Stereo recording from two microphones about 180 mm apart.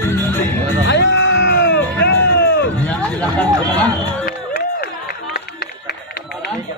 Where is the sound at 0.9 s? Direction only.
85° left.